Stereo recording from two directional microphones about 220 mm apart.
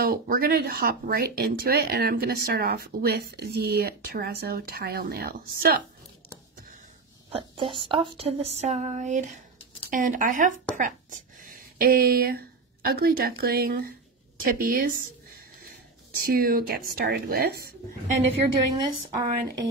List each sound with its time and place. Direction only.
0.0 s speech: 45° right (ahead or behind)
7.2 s speech: 25° right (ahead or behind); by 15.0 s 40° right (ahead or behind)
16.2 s speech: 45° right (ahead or behind)
18.7 s speech: 20° right (ahead or behind)